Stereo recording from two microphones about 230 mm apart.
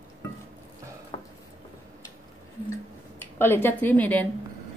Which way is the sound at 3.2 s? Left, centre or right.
Centre.